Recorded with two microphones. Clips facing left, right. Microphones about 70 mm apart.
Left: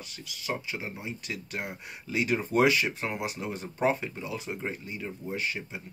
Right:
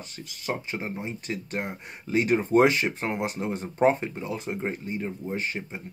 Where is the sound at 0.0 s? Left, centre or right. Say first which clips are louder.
Right 4 dB; right.